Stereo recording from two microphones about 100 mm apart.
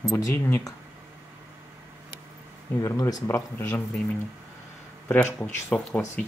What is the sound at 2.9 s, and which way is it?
Speech, 30° left (ahead or behind).